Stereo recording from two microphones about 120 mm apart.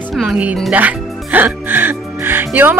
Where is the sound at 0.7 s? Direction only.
15° right (ahead or behind).